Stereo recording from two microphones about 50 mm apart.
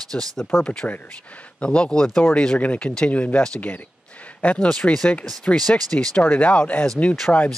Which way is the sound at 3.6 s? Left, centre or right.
Left.